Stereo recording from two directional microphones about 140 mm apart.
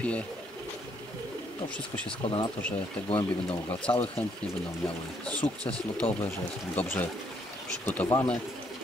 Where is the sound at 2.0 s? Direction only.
40° left (ahead or behind).